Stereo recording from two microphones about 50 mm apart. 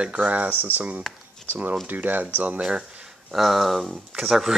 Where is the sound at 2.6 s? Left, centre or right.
Centre.